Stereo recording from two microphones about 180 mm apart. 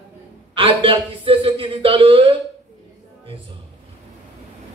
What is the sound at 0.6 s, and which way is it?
A man's voice, 30° right (ahead or behind).